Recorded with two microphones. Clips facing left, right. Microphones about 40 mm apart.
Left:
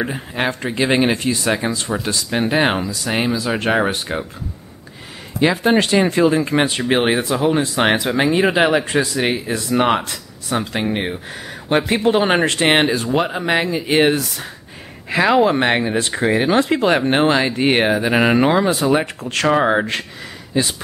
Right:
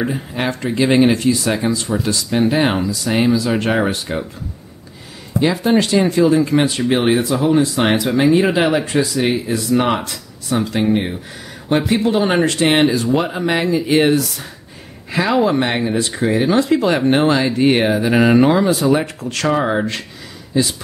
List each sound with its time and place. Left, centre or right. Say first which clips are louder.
0.0 s speech: right 1 dB; centre
5.4 s speech: even; left
19.2 s speech: left 2 dB; left